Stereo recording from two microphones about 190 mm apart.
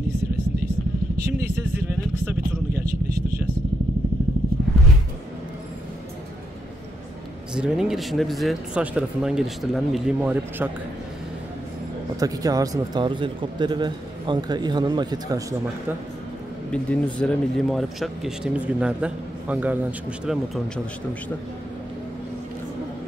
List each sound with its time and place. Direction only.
7.5 s speech: 5° right (ahead or behind)
12.2 s a man's voice: 20° right (ahead or behind)
16.7 s speech: 5° left (ahead or behind)